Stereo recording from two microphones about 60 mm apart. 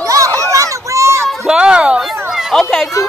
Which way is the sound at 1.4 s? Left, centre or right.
Centre.